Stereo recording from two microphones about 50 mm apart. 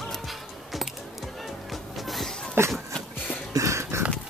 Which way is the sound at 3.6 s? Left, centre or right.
Right.